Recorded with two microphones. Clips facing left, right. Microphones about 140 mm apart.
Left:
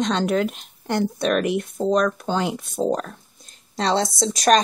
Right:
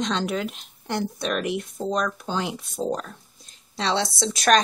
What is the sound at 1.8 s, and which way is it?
Speech, centre (ahead or behind).